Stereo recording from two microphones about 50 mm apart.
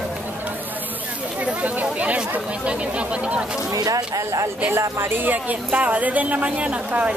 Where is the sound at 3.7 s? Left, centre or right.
Right.